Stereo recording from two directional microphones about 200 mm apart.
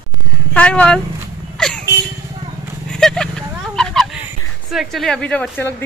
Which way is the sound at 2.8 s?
5° left (ahead or behind).